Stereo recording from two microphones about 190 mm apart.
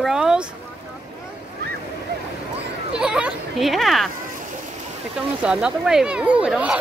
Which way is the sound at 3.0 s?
5° right (ahead or behind).